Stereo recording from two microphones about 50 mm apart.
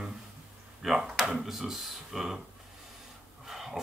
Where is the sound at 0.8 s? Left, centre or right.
Centre.